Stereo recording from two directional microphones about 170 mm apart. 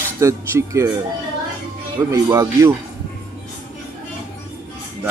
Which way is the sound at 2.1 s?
20° right (ahead or behind).